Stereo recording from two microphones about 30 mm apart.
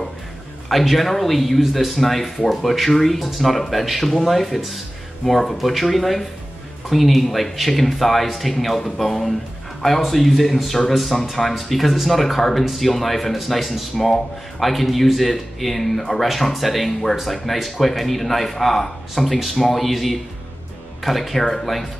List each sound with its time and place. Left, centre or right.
0.7 s speech: centre